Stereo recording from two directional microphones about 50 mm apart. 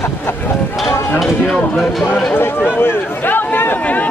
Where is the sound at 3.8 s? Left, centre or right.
Left.